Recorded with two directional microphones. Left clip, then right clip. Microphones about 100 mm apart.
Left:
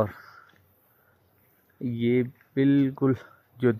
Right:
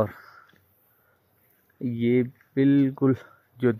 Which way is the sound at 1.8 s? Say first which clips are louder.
Right 1 dB; 5° left (ahead or behind).